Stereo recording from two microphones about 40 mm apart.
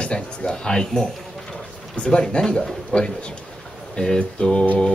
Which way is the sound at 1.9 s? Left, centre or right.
Left.